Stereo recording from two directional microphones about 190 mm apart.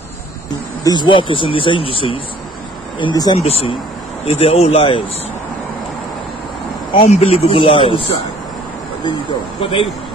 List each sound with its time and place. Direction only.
0.8 s speech: 25° left (ahead or behind)
3.3 s speech: 35° left (ahead or behind)
6.9 s speech: 30° left (ahead or behind)
9.6 s speech: 30° left (ahead or behind)